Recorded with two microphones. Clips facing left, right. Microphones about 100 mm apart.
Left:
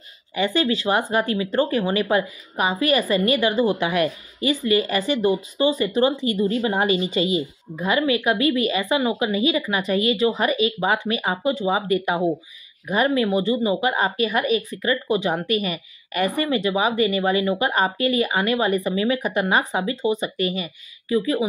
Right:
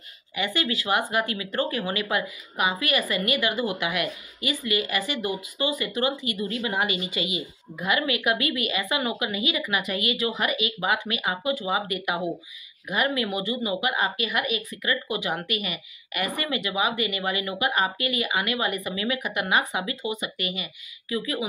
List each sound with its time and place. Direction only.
0.4 s speech: 30° left (ahead or behind)